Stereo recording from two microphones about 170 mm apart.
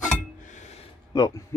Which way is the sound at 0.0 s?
45° left (ahead or behind).